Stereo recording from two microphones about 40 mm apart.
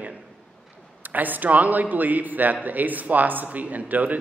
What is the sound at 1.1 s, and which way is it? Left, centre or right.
A man's voice, right.